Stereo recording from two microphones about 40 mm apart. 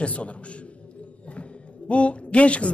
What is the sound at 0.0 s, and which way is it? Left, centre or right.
A man's voice, left.